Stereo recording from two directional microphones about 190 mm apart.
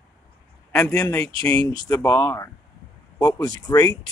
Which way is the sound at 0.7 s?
10° left (ahead or behind).